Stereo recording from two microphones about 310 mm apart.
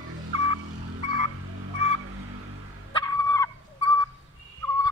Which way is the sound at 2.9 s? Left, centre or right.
Centre.